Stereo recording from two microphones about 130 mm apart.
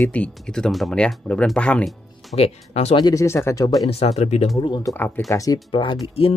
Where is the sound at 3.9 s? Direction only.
50° left (ahead or behind).